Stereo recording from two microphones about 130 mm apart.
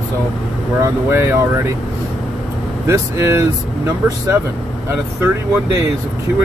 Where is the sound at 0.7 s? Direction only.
20° right (ahead or behind).